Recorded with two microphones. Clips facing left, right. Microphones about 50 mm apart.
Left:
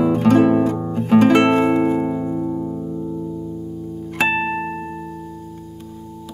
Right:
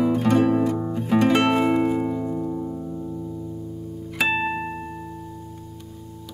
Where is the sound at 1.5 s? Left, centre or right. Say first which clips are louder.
Left 4 dB; centre.